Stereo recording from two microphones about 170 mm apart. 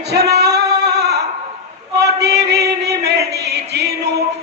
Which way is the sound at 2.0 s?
75° right (ahead or behind).